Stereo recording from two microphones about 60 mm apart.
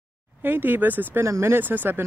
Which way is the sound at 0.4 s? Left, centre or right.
Right.